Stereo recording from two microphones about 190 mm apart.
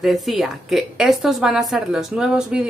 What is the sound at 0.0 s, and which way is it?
A woman's voice, centre (ahead or behind).